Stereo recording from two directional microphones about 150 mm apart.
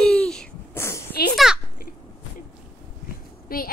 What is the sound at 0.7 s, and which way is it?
Speech, 15° left (ahead or behind).